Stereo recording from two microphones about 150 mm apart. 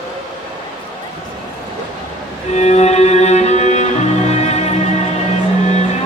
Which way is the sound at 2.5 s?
50° left (ahead or behind).